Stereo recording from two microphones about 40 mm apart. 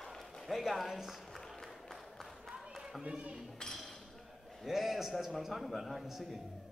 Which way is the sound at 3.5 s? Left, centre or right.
Centre.